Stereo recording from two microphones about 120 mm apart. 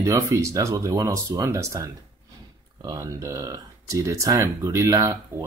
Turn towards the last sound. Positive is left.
turn(degrees=-30)  # may be behind; listen again after turning